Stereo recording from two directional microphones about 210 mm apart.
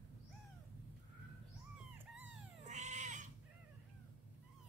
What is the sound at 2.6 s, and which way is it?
Cat, 35° right (ahead or behind).